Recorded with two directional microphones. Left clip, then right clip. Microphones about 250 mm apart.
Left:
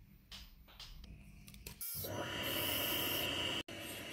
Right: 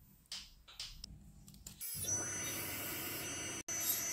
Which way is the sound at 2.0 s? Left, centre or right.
Left.